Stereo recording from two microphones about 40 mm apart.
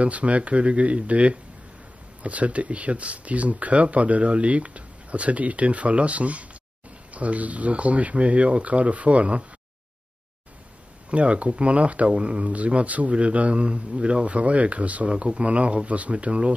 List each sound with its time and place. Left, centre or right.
0.0 s speech: right
11.1 s speech: right